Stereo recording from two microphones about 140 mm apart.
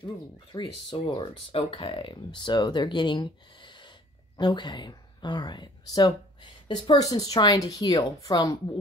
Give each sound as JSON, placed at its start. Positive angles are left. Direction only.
{"t": 0.0, "sound": "a woman's voice", "side_deg": 35}